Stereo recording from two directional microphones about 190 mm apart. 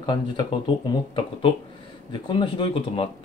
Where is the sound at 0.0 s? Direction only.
25° left (ahead or behind).